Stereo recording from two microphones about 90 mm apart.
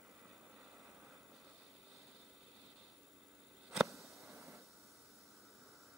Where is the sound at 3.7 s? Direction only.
Centre (ahead or behind).